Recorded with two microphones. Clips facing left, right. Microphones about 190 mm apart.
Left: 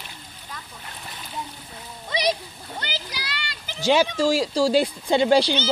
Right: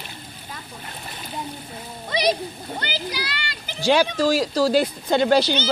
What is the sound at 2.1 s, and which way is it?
Splash, 55° right (ahead or behind).